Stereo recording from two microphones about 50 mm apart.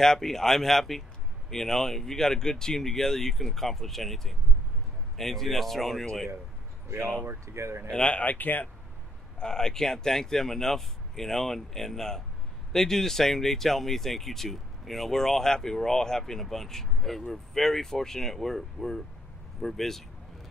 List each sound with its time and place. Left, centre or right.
0.0 s speech: centre
7.4 s speech: right
7.9 s speech: left
9.4 s speech: centre